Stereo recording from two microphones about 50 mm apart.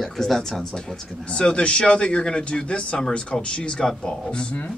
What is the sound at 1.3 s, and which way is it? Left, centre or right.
Speech, centre.